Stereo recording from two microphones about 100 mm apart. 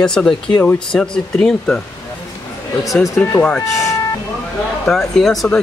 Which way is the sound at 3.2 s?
15° left (ahead or behind).